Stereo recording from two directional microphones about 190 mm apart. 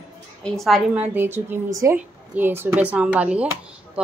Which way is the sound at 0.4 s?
Centre (ahead or behind).